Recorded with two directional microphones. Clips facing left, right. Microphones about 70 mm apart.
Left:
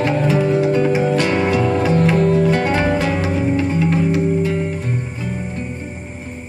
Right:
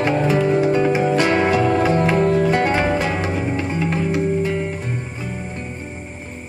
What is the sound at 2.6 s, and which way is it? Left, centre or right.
Music, centre.